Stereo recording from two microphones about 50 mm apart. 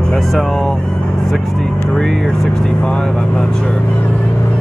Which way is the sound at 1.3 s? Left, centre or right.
Centre.